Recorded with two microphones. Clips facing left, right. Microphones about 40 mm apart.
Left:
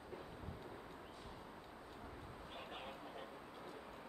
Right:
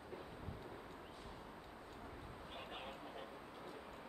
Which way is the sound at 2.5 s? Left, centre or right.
Centre.